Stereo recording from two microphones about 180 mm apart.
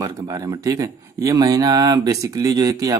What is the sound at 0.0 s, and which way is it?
Speech, 20° right (ahead or behind).